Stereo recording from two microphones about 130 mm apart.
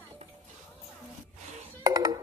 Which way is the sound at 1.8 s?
30° right (ahead or behind).